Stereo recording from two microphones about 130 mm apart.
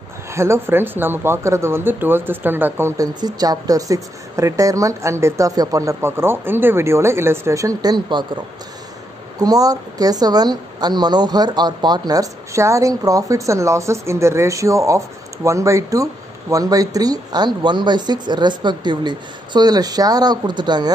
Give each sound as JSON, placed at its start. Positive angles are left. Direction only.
{"t": 0.3, "sound": "speech", "side_deg": -20}
{"t": 3.0, "sound": "a woman's voice", "side_deg": -30}
{"t": 9.4, "sound": "a woman's voice", "side_deg": -30}